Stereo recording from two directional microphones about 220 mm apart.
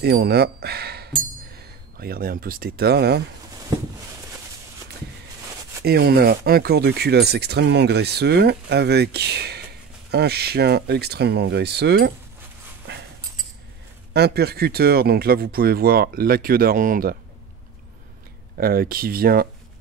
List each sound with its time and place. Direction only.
0.0 s speech: 45° right (ahead or behind)
5.9 s speech: 45° right (ahead or behind)
14.1 s speech: 45° right (ahead or behind)
18.6 s speech: 45° right (ahead or behind)